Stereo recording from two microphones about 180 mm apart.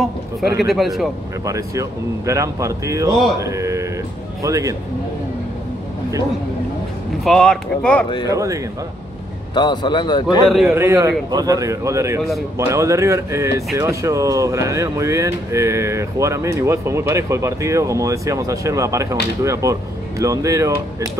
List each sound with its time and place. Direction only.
0.7 s speech: centre (ahead or behind)
1.4 s speech: 15° right (ahead or behind)
7.2 s speech: 5° left (ahead or behind)
8.3 s speech: 20° right (ahead or behind)
9.5 s a man's voice: 25° left (ahead or behind)
10.2 s speech: 5° right (ahead or behind)